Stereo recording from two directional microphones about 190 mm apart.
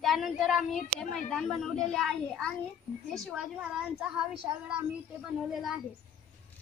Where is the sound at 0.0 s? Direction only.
Centre (ahead or behind).